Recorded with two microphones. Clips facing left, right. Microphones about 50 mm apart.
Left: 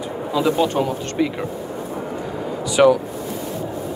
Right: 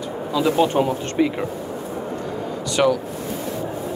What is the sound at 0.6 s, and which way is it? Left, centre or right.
Speech, centre.